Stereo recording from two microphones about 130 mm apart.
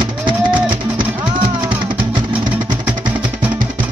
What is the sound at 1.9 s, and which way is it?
Music, 40° right (ahead or behind).